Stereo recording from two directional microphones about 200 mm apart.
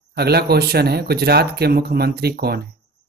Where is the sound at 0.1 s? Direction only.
55° right (ahead or behind).